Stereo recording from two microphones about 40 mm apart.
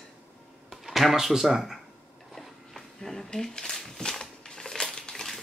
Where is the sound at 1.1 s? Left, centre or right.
Centre.